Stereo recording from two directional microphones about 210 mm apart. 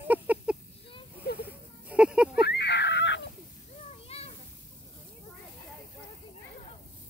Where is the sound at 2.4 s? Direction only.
55° left (ahead or behind).